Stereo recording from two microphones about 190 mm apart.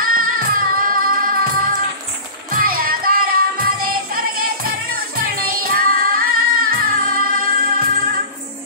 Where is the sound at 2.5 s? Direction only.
50° right (ahead or behind).